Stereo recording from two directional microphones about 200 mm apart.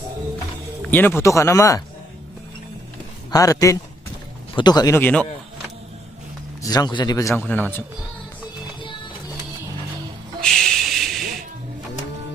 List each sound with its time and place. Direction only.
0.8 s a man's voice: 10° left (ahead or behind)
3.3 s a man's voice: 15° left (ahead or behind)
6.6 s a man's voice: 20° left (ahead or behind)
10.4 s music: centre (ahead or behind)